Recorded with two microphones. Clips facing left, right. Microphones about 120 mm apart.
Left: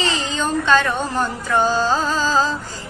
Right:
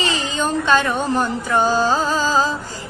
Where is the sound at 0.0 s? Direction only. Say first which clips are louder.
Right 1 dB; 15° right (ahead or behind).